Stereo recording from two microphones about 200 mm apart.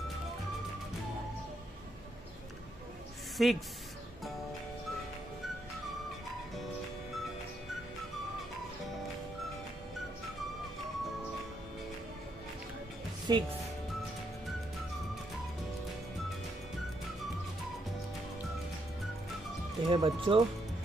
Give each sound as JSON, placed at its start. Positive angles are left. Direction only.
{"t": 3.4, "sound": "speech", "side_deg": 0}
{"t": 13.3, "sound": "speech", "side_deg": -20}
{"t": 19.9, "sound": "speech", "side_deg": -25}